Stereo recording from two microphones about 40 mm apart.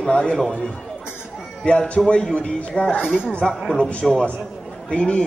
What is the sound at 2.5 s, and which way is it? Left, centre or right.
Speech, left.